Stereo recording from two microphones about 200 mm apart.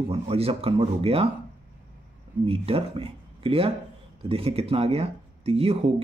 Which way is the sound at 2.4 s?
30° right (ahead or behind).